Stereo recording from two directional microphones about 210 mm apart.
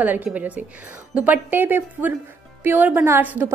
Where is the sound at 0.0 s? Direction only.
10° right (ahead or behind).